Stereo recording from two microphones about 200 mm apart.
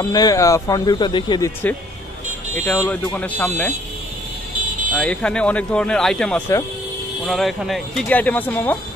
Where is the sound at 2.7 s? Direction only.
10° left (ahead or behind).